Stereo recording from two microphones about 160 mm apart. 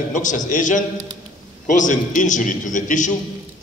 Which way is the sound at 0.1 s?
50° left (ahead or behind).